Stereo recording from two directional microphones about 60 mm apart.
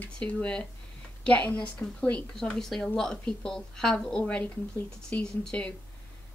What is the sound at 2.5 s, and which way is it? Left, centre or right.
Speech, centre.